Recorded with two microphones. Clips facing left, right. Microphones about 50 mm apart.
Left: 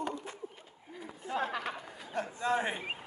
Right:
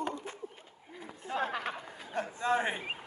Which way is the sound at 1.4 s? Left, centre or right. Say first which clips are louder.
Right 1 dB; right.